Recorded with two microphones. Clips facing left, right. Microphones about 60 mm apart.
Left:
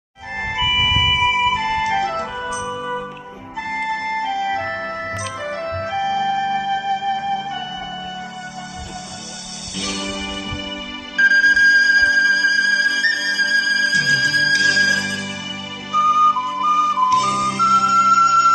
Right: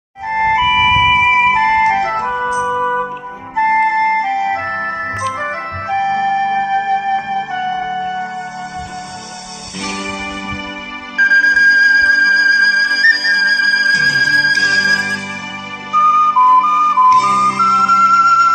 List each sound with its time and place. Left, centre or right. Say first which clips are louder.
0.3 s music: right 9 dB; right
9.8 s music: right 3 dB; right
11.1 s music: right 3 dB; right